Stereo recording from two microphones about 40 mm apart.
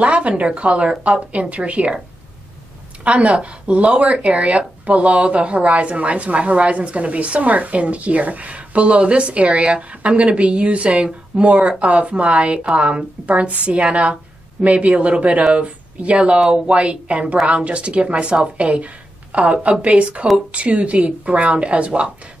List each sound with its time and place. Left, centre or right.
0.0 s speech: right
3.0 s speech: right